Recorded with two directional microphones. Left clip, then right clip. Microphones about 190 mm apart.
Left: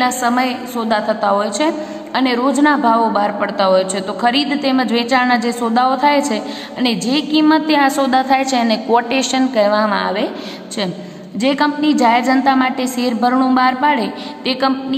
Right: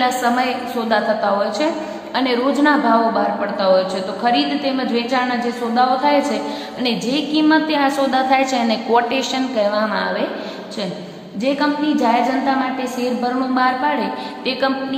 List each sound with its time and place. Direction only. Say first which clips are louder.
0.0 s a woman's voice: left 1 dB; 20° left (ahead or behind)
11.4 s a woman's voice: left 3 dB; 25° left (ahead or behind)